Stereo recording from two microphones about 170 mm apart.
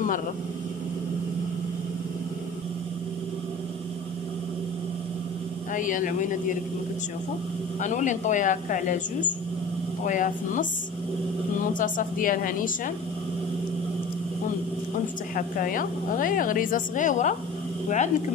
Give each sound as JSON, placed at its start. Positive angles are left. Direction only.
{"t": 5.8, "sound": "a woman's voice", "side_deg": 50}
{"t": 7.8, "sound": "a woman's voice", "side_deg": 45}
{"t": 11.8, "sound": "a woman's voice", "side_deg": 50}
{"t": 15.3, "sound": "a woman's voice", "side_deg": 55}